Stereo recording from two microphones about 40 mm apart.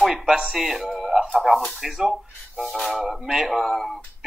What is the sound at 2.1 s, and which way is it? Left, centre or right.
Speech, centre.